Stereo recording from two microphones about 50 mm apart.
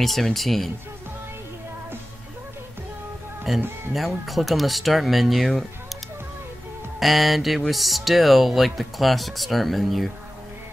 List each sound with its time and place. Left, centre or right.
0.0 s speech: centre
3.5 s speech: centre
7.0 s speech: centre